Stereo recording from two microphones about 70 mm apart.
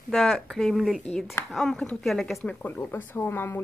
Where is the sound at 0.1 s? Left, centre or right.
Centre.